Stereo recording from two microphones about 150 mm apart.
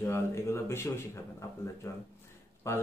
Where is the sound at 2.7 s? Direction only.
15° left (ahead or behind).